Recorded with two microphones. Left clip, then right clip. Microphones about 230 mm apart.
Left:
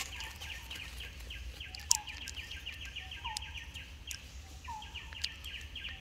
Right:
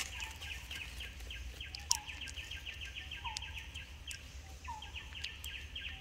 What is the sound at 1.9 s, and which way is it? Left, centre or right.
Bird, left.